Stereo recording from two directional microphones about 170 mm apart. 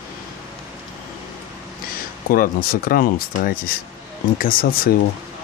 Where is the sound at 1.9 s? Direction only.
60° left (ahead or behind).